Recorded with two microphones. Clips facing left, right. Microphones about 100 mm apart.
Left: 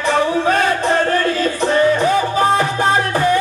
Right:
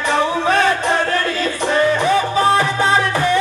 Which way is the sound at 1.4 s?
40° left (ahead or behind).